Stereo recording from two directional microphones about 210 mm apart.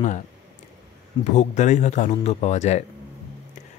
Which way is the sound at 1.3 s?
35° left (ahead or behind).